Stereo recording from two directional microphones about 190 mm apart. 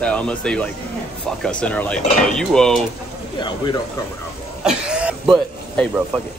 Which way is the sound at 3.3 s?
25° left (ahead or behind).